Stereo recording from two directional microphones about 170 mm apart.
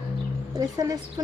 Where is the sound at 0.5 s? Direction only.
20° right (ahead or behind).